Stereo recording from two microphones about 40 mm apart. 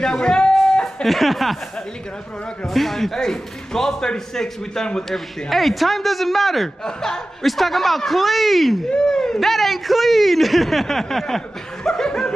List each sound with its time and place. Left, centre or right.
0.0 s a sound: centre
1.0 s a man's voice: centre
2.6 s a man's voice: centre
5.1 s a man's voice: centre
6.8 s speech: centre
7.4 s a man's voice: centre
8.9 s speech: centre
9.4 s a man's voice: centre
11.8 s laughter: centre